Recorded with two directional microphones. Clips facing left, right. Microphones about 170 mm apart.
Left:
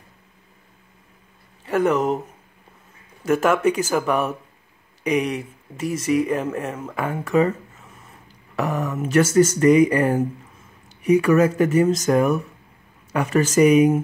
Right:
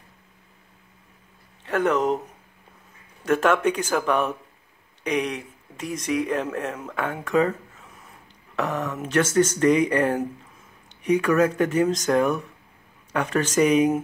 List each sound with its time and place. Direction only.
1.6 s speech: 5° left (ahead or behind)
3.3 s speech: 10° left (ahead or behind)